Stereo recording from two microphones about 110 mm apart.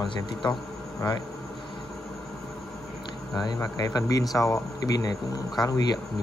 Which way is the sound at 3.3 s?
40° left (ahead or behind).